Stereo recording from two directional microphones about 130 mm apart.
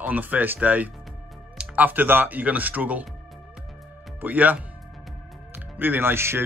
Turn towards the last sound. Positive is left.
turn(degrees=-20)  # may be behind; listen again after turning